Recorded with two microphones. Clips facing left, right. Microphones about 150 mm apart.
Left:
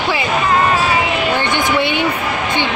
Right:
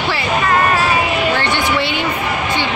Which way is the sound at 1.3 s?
15° left (ahead or behind).